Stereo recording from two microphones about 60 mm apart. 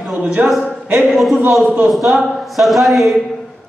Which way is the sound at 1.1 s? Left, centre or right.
Centre.